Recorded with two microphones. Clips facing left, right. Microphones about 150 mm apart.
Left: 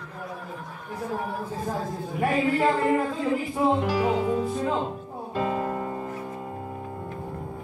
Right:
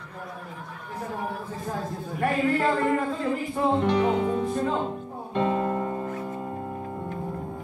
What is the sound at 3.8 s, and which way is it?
Music, 5° left (ahead or behind).